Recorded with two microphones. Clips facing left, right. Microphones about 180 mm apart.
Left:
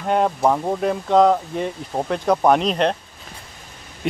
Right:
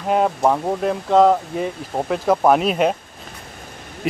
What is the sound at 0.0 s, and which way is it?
Speech, centre (ahead or behind).